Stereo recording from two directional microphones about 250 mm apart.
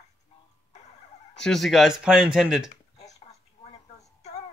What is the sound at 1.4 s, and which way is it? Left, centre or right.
Speech, centre.